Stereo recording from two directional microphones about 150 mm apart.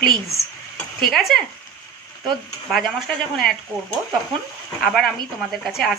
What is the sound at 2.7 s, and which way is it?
Speech, centre (ahead or behind).